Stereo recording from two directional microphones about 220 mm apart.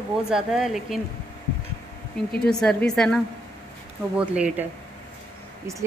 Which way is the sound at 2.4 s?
5° left (ahead or behind).